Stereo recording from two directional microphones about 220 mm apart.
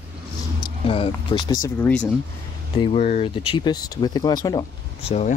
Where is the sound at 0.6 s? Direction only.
20° left (ahead or behind).